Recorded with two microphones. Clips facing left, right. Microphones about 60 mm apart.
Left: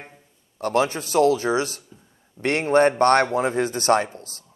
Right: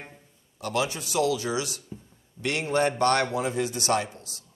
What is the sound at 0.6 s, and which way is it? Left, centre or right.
Speech, left.